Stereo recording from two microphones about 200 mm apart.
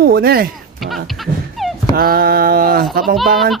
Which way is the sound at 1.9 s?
50° right (ahead or behind).